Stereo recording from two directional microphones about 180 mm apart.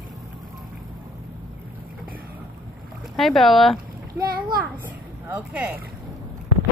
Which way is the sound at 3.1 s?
Centre (ahead or behind).